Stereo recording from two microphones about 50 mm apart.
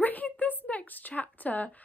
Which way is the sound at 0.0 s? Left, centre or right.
Left.